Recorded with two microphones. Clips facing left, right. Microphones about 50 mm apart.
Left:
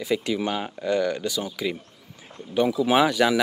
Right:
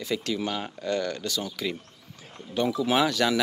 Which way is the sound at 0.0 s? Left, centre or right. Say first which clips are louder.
Left 4 dB; centre.